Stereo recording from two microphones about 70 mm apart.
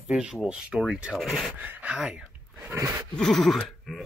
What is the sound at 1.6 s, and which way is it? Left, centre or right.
Speech, right.